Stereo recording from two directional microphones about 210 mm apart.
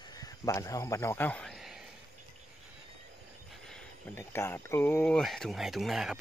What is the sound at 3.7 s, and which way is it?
Speech, 10° left (ahead or behind).